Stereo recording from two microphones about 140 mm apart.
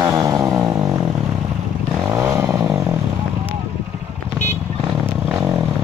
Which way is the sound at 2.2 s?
20° right (ahead or behind).